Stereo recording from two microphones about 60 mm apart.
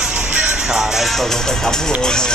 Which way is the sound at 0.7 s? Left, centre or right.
Centre.